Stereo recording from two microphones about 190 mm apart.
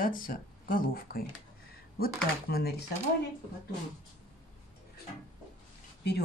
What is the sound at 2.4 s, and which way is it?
Speech, 55° left (ahead or behind).